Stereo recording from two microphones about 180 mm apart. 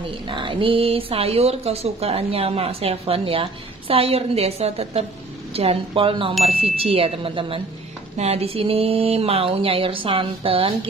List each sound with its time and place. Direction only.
0.3 s speech: 30° right (ahead or behind)